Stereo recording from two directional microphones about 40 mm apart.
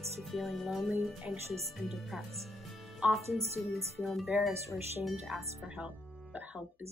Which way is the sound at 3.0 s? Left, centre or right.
Right.